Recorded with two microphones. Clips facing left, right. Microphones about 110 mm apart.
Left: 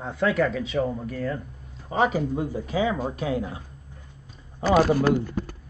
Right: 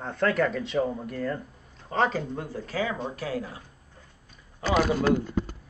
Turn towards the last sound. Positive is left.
turn(degrees=10)  # may be behind; listen again after turning